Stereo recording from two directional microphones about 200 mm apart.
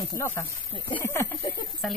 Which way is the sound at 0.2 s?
10° left (ahead or behind).